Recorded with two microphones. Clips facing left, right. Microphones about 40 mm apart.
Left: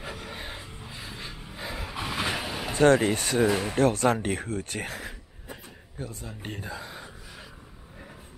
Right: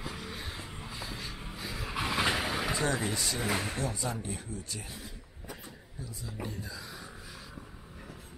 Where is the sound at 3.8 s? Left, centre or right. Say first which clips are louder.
Left 12 dB; left.